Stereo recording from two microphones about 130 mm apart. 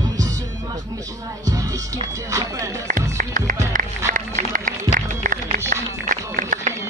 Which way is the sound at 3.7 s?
90° right.